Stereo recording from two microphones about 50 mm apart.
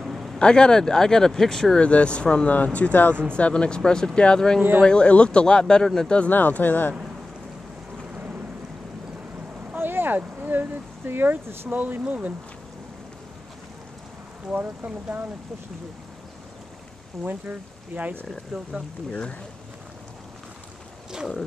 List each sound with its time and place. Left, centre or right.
0.0 s a sound: centre
0.4 s speech: centre
1.8 s speech: left
6.3 s speech: left
8.1 s boat: right
9.8 s speech: right
11.7 s speech: right
14.5 s speech: right
17.2 s speech: right
18.5 s speech: centre